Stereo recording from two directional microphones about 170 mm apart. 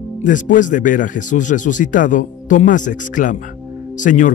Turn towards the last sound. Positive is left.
turn(degrees=50)  # may be behind; listen again after turning